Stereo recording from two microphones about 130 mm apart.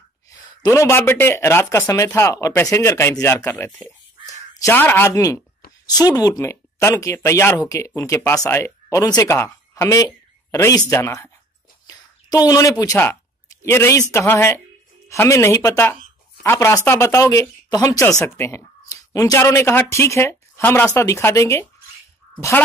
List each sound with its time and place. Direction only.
0.3 s speech: 30° left (ahead or behind)
13.0 s a sound: 20° left (ahead or behind)
13.7 s speech: 20° left (ahead or behind)